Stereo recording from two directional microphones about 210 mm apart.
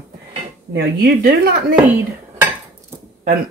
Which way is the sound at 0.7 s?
50° right (ahead or behind).